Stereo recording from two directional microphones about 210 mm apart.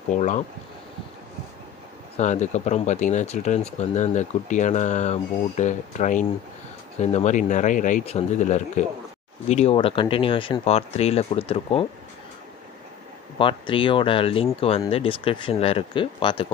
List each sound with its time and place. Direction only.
0.1 s speech: 35° left (ahead or behind)
2.1 s speech: 35° left (ahead or behind)
13.4 s speech: 25° left (ahead or behind)